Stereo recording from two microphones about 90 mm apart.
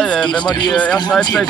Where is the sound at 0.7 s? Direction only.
15° left (ahead or behind).